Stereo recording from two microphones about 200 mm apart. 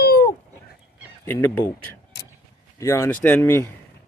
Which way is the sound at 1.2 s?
10° left (ahead or behind).